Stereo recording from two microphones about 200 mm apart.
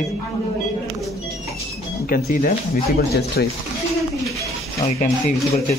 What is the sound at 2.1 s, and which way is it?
Speech, 45° left (ahead or behind).